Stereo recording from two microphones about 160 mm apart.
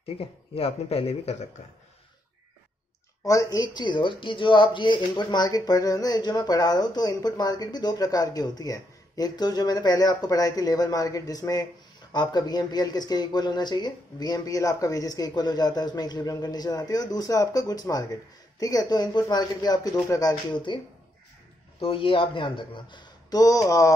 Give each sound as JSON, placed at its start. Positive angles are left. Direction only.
{"t": 0.6, "sound": "speech", "side_deg": 40}
{"t": 3.3, "sound": "speech", "side_deg": 20}